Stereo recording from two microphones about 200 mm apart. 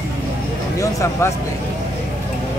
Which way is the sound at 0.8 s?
15° left (ahead or behind).